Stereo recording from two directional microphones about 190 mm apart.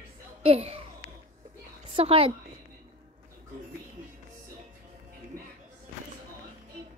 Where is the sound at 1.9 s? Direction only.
30° right (ahead or behind).